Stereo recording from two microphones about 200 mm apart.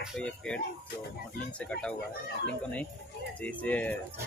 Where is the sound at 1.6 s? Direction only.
5° left (ahead or behind).